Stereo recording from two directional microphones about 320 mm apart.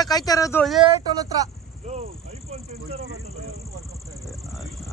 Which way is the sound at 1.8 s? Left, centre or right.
Centre.